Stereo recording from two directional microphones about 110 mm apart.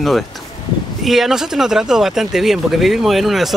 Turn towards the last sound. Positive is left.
turn(degrees=0)  # may be behind; listen again after turning